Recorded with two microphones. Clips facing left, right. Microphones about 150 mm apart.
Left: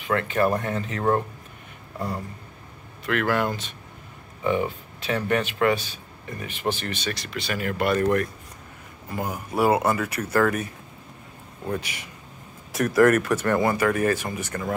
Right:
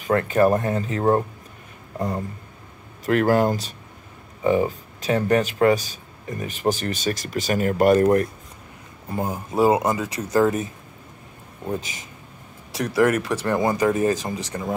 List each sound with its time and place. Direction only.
0.0 s speech: 40° right (ahead or behind)
3.1 s speech: 40° right (ahead or behind)
12.8 s speech: 15° right (ahead or behind)